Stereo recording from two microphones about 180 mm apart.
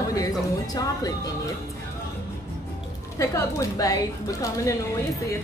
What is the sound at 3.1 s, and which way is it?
Speech, 15° left (ahead or behind).